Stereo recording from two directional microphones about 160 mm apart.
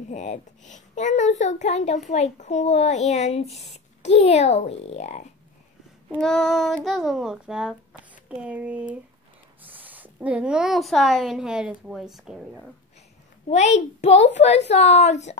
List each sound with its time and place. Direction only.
0.1 s a child's voice: 50° left (ahead or behind)
6.0 s a child's voice: centre (ahead or behind)
13.5 s a child's voice: 45° left (ahead or behind)